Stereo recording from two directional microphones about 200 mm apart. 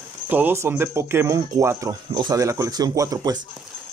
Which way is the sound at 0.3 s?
10° right (ahead or behind).